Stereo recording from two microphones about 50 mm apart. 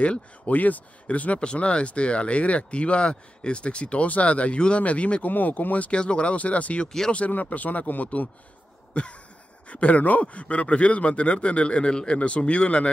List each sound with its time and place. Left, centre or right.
0.0 s speech: left
5.3 s speech: left
5.9 s speech: centre
8.9 s a sound: left
9.7 s speech: left